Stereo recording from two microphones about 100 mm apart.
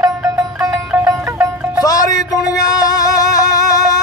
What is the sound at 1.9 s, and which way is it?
Music, 40° left (ahead or behind).